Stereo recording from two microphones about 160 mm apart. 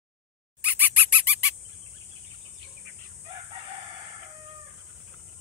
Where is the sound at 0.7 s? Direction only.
10° right (ahead or behind).